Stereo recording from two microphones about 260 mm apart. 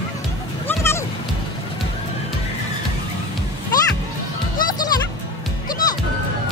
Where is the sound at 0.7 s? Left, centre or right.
Centre.